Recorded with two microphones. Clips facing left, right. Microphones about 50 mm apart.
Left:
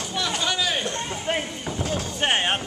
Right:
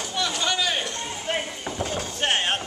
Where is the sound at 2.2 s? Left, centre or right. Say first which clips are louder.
Left 1 dB; centre.